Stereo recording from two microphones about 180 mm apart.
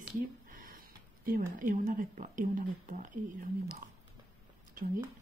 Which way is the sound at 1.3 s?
50° right (ahead or behind).